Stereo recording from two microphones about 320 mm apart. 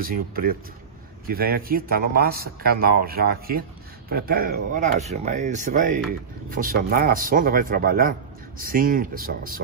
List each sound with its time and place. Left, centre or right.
0.0 s speech: right